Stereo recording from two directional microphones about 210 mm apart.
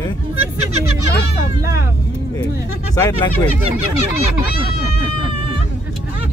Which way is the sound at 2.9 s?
15° left (ahead or behind).